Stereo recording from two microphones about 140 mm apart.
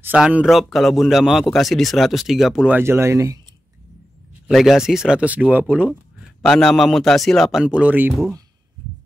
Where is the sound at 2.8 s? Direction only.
20° right (ahead or behind).